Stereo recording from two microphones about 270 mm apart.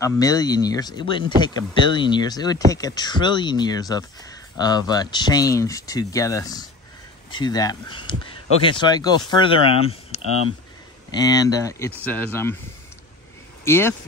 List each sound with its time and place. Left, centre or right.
0.0 s speech: centre
13.7 s speech: centre